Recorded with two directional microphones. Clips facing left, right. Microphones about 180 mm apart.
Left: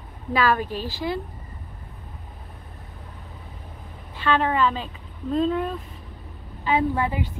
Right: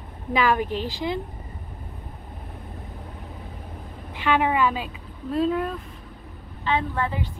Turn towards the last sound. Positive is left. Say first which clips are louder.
# left 3 dB
turn(degrees=15)  # may be behind; listen again after turning